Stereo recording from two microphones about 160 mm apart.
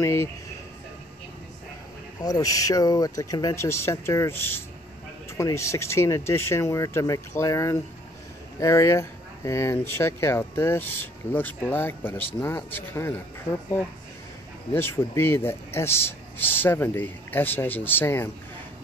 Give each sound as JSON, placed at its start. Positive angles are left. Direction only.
{"t": 0.0, "sound": "speech", "side_deg": 15}
{"t": 2.1, "sound": "speech", "side_deg": 25}